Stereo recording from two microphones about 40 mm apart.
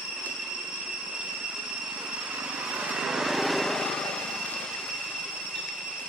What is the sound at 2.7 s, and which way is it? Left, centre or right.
Vehicle, right.